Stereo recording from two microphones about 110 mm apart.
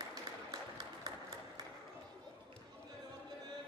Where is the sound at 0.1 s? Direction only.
40° right (ahead or behind).